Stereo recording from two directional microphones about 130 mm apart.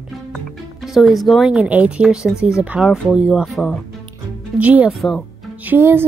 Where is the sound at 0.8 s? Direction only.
Centre (ahead or behind).